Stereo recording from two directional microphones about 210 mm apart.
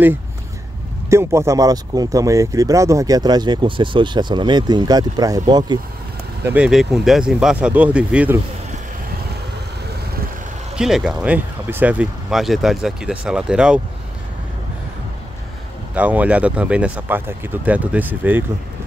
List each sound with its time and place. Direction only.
1.1 s speech: 15° right (ahead or behind)
6.4 s speech: 5° right (ahead or behind)
10.8 s speech: centre (ahead or behind)
15.9 s speech: 5° right (ahead or behind)